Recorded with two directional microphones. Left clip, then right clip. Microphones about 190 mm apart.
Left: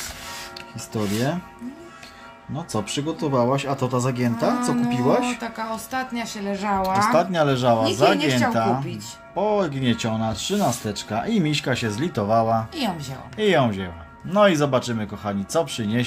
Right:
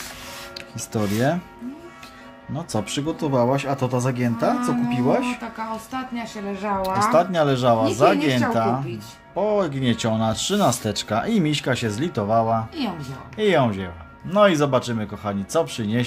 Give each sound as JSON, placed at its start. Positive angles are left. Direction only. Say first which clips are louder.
{"t": 0.6, "sound": "speech", "louder": "right 3 dB", "side_deg": -15}
{"t": 2.5, "sound": "speech", "louder": "even", "side_deg": -5}
{"t": 5.4, "sound": "speech", "louder": "left 1 dB", "side_deg": 50}
{"t": 6.8, "sound": "speech", "louder": "right 1 dB", "side_deg": 0}